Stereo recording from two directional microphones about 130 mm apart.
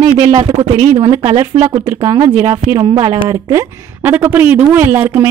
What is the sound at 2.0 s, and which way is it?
A woman's voice, 30° right (ahead or behind).